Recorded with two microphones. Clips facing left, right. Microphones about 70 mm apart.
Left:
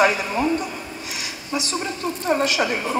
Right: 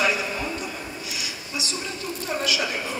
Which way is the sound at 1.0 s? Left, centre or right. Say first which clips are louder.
Left 2 dB; left.